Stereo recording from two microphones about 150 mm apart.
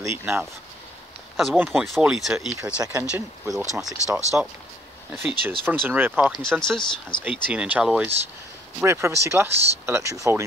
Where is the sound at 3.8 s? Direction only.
Centre (ahead or behind).